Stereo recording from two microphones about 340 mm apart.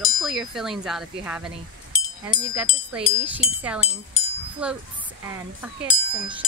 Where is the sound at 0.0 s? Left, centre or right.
Centre.